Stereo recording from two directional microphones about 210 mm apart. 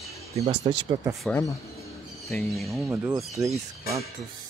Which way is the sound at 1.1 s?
Centre (ahead or behind).